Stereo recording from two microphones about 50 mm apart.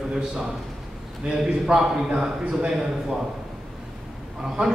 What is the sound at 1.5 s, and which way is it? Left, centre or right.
A man's voice, centre.